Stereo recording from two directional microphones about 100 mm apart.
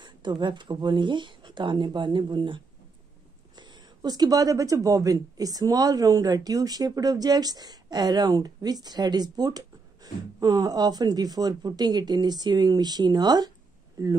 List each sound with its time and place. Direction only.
0.0 s speech: 50° right (ahead or behind)
3.5 s speech: 45° right (ahead or behind)